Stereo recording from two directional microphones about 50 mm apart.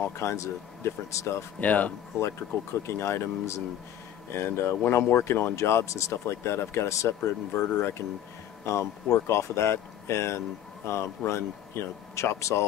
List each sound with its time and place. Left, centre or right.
0.0 s speech: left
1.6 s speech: left
2.9 s speech: left
4.3 s speech: left